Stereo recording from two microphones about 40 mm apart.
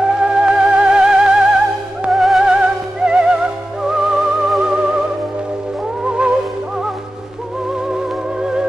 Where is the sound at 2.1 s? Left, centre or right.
Centre.